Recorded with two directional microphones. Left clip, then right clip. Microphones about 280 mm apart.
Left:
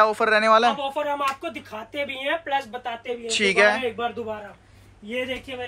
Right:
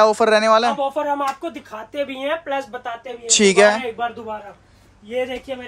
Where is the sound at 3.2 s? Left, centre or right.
Centre.